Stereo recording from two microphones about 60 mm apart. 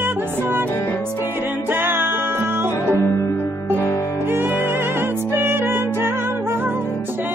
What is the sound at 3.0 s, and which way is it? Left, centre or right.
Music, left.